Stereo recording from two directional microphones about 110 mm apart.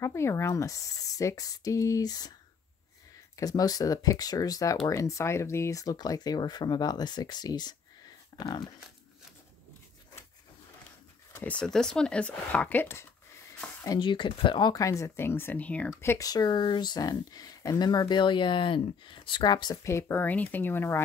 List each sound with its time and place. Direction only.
0.0 s speech: 25° left (ahead or behind)
3.3 s speech: 35° left (ahead or behind)
11.3 s speech: 15° left (ahead or behind)
13.8 s speech: 45° left (ahead or behind)
14.7 s speech: 30° left (ahead or behind); by 16.0 s 10° left (ahead or behind)
16.0 s speech: 20° left (ahead or behind)
16.3 s speech: 40° left (ahead or behind)
19.8 s speech: 25° left (ahead or behind)